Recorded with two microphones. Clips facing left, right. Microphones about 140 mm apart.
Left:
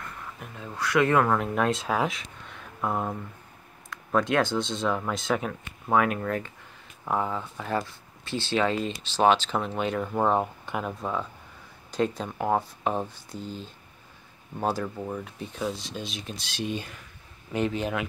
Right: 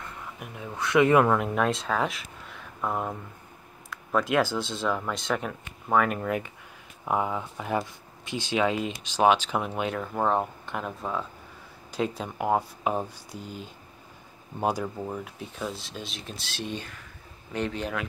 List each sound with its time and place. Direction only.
0.0 s speech: 15° right (ahead or behind)
1.3 s speech: centre (ahead or behind)
6.1 s speech: 10° right (ahead or behind); by 18.0 s 5° left (ahead or behind)